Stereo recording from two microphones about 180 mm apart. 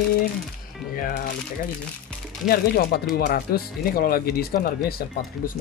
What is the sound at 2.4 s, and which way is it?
Speech, 55° left (ahead or behind).